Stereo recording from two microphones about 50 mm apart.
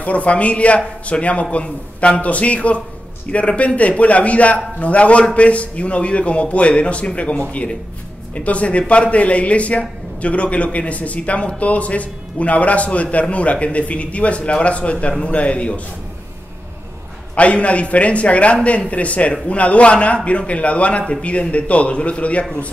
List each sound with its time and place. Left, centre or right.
0.0 s a man's voice: left
8.5 s a man's voice: left
17.4 s a man's voice: left